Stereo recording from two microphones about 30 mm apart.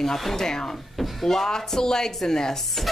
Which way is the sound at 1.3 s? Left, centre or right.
Centre.